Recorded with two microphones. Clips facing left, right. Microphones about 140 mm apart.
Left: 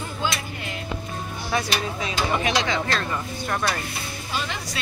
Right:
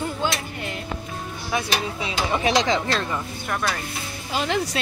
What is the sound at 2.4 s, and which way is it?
Speech, 30° right (ahead or behind).